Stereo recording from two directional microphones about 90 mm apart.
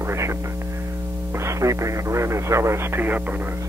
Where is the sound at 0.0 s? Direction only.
30° right (ahead or behind).